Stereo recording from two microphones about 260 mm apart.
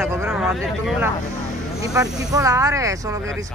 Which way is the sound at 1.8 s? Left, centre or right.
Centre.